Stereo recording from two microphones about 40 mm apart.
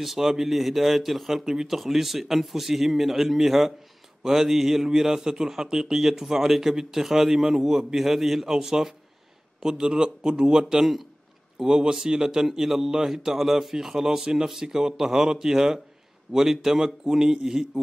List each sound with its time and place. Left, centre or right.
0.0 s a man's voice: centre
1.4 s a man's voice: centre